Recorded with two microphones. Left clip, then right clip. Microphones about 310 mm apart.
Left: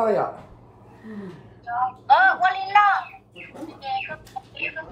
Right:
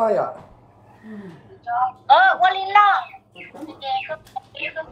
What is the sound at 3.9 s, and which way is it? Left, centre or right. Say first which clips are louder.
Chicken: right 3 dB; right.